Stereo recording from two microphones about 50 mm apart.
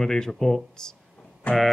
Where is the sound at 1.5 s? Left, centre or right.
Left.